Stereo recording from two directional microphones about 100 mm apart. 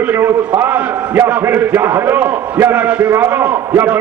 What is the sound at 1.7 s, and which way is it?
A man's voice, 25° right (ahead or behind).